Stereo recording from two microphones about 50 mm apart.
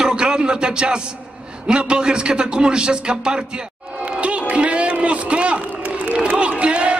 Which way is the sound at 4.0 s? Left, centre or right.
Right.